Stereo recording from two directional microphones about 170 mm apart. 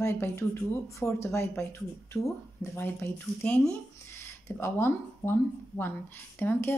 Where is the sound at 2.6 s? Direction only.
15° left (ahead or behind).